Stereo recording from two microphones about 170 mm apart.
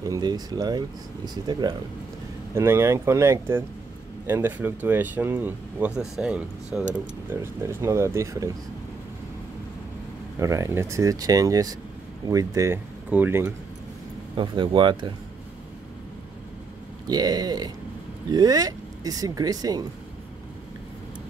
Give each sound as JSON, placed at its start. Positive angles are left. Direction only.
{"t": 0.0, "sound": "speech", "side_deg": -20}
{"t": 2.5, "sound": "speech", "side_deg": -15}
{"t": 7.2, "sound": "speech", "side_deg": -15}
{"t": 10.4, "sound": "speech", "side_deg": -15}
{"t": 14.3, "sound": "speech", "side_deg": -30}
{"t": 17.1, "sound": "speech", "side_deg": -25}